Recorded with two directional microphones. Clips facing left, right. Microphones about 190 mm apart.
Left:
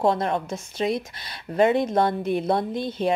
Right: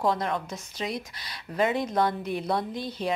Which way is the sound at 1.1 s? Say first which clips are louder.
Left 6 dB; 55° left (ahead or behind).